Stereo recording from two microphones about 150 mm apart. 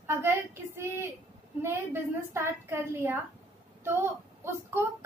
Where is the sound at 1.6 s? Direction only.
15° right (ahead or behind).